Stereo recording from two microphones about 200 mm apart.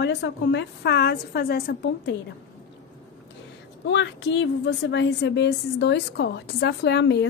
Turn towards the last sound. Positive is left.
turn(degrees=60)  # may be behind; listen again after turning